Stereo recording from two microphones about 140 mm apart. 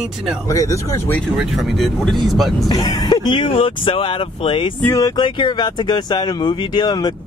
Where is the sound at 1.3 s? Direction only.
Centre (ahead or behind).